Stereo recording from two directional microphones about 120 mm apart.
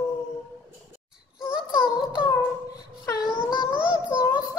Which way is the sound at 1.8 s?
40° left (ahead or behind).